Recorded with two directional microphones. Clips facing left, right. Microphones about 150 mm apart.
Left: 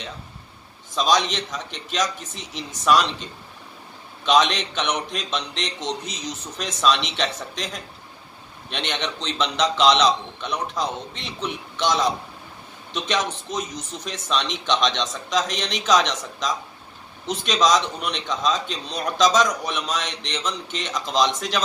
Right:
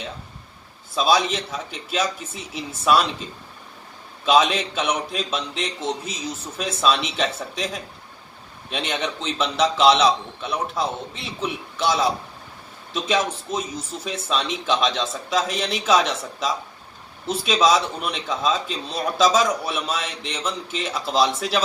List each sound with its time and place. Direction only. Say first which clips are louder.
0.9 s a man's voice: right 1 dB; 5° right (ahead or behind)